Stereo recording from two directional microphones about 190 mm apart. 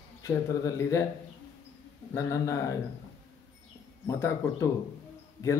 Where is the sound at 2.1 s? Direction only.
15° left (ahead or behind).